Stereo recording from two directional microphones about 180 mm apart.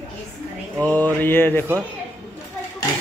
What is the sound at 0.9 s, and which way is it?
Speech, 10° left (ahead or behind).